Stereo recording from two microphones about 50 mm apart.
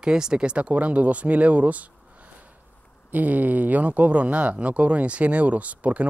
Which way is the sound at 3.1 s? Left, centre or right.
Right.